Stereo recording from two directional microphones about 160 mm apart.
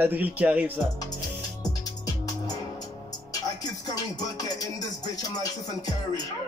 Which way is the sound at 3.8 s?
25° left (ahead or behind).